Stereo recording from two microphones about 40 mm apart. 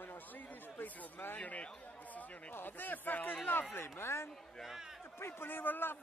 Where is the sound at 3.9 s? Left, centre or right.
Left.